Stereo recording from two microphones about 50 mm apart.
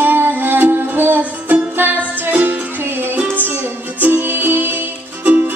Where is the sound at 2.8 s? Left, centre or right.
Right.